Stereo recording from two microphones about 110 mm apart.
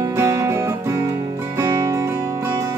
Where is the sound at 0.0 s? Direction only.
25° right (ahead or behind).